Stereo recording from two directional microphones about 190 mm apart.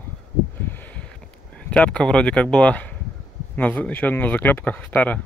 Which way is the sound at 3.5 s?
10° left (ahead or behind).